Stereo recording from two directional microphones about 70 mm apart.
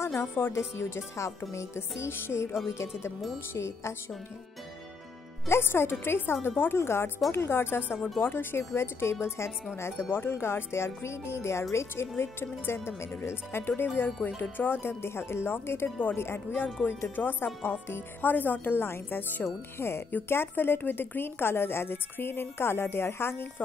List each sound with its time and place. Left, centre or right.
0.0 s a woman's voice: left
5.5 s a woman's voice: left